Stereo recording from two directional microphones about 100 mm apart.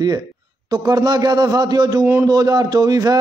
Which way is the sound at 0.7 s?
45° right (ahead or behind).